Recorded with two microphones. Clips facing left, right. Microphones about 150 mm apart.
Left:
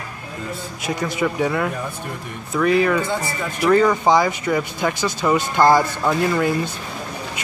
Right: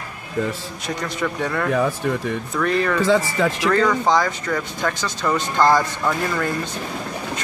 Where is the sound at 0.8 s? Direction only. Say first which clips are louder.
Left 3 dB; 5° left (ahead or behind).